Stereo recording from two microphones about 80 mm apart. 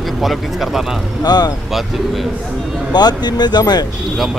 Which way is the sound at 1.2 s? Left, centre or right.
Left.